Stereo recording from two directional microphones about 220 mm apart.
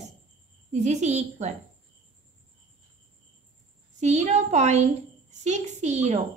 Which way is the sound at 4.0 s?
30° right (ahead or behind).